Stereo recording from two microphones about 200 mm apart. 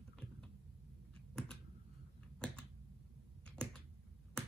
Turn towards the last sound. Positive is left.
turn(degrees=5)  # may be behind; listen again after turning